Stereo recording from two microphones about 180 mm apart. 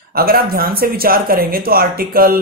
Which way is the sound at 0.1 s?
55° right (ahead or behind).